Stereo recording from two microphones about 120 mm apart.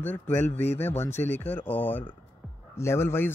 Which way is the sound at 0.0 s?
15° left (ahead or behind).